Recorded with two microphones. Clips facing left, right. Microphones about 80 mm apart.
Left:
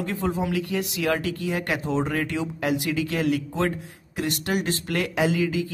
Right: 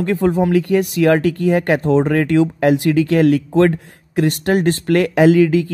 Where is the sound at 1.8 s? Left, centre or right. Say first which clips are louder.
Right 10 dB; right.